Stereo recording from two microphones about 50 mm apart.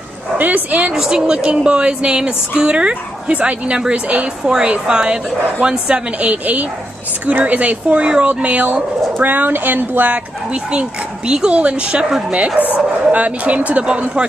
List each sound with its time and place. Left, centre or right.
0.7 s speech: right
0.9 s speech: centre; by 10.1 s right
10.1 s speech: right
12.6 s speech: left
13.1 s speech: right